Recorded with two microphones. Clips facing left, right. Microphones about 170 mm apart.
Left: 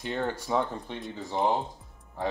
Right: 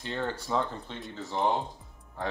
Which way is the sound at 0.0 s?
15° left (ahead or behind).